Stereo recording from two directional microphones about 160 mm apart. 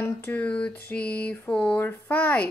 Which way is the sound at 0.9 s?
10° left (ahead or behind).